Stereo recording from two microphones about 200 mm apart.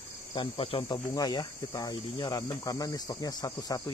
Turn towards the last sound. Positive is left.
turn(degrees=20)  # may be behind; listen again after turning